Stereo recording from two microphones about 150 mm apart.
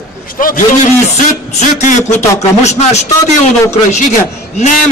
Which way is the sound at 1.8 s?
50° left (ahead or behind).